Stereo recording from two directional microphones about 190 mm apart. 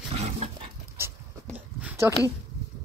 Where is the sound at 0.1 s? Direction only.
35° right (ahead or behind).